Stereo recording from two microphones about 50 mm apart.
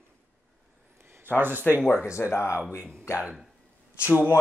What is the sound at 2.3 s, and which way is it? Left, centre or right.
Speech, left.